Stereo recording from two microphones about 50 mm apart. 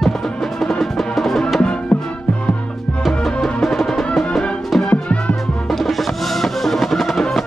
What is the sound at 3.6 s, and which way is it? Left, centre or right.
Music, centre.